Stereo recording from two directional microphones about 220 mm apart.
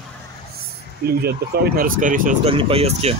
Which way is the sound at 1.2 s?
45° right (ahead or behind).